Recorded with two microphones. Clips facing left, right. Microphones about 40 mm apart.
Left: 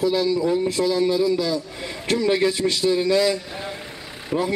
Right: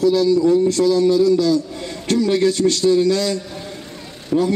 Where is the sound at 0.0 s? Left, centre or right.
Centre.